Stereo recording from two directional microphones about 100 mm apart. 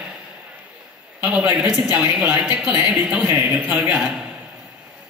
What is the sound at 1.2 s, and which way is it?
A woman's voice, 15° right (ahead or behind).